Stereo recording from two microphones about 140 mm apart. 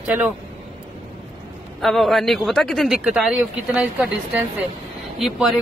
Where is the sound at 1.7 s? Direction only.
Centre (ahead or behind).